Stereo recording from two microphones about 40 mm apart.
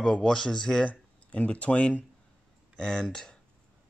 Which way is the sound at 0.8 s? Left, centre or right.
Left.